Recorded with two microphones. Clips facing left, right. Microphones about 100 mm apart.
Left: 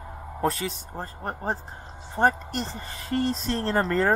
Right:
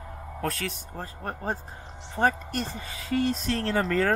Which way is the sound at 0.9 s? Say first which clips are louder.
Left 2 dB; 30° left (ahead or behind).